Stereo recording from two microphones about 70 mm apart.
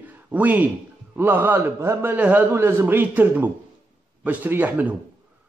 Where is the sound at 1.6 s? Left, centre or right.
Right.